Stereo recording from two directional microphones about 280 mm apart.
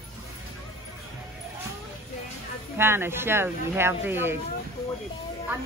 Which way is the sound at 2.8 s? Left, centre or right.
Centre.